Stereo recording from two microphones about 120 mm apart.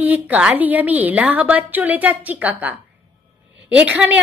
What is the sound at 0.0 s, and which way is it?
A woman's voice, 15° right (ahead or behind).